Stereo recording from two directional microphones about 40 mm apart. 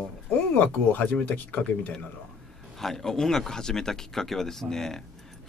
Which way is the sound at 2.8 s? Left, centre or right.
Centre.